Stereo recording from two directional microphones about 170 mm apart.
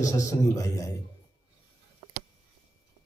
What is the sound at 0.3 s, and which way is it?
Speech, 20° left (ahead or behind).